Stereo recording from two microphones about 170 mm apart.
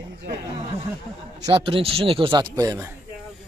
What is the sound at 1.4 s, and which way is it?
A man's voice, 25° right (ahead or behind).